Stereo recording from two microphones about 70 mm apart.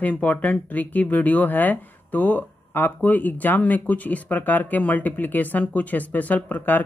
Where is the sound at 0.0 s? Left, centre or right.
Left.